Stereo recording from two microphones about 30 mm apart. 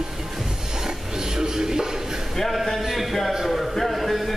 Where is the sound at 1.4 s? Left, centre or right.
Centre.